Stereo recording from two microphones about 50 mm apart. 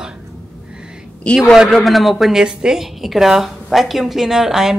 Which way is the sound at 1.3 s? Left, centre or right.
Left.